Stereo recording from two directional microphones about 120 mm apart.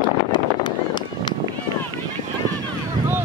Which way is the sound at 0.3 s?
40° left (ahead or behind).